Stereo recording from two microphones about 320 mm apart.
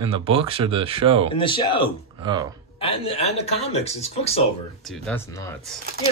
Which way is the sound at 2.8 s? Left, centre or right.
Centre.